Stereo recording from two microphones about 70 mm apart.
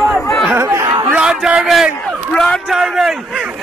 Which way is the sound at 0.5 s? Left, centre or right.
Right.